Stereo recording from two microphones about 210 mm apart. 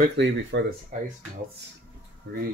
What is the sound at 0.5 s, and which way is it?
Speech, 60° right (ahead or behind).